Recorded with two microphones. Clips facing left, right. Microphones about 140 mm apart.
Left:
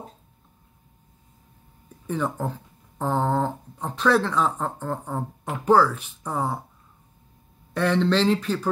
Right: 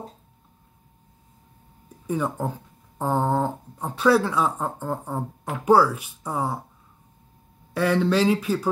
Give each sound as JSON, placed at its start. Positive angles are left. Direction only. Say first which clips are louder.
{"t": 2.0, "sound": "speech", "louder": "right 1 dB", "side_deg": -10}
{"t": 7.7, "sound": "speech", "louder": "even", "side_deg": -10}